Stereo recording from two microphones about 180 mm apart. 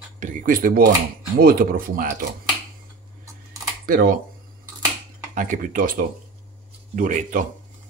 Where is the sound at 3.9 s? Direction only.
50° right (ahead or behind).